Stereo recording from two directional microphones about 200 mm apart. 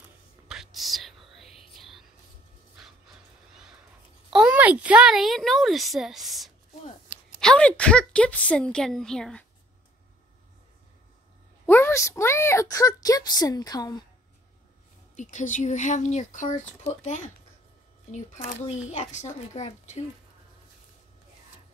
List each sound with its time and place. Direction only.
0.5 s whispering: centre (ahead or behind)
4.3 s a woman's voice: 5° right (ahead or behind)
11.6 s a woman's voice: 10° left (ahead or behind)
15.1 s speech: 40° left (ahead or behind)